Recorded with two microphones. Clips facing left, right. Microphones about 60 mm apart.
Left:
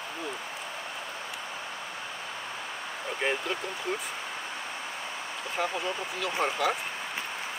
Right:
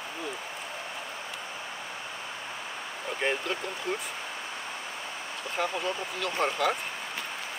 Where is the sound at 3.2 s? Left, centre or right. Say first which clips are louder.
Even; centre.